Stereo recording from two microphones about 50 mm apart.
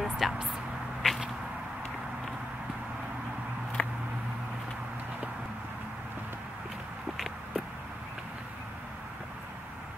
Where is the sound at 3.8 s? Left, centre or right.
Left.